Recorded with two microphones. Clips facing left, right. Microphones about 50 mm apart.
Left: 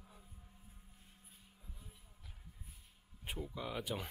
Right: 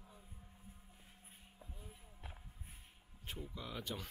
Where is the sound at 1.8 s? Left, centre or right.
Right.